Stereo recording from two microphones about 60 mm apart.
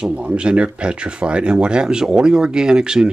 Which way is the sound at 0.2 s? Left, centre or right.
Centre.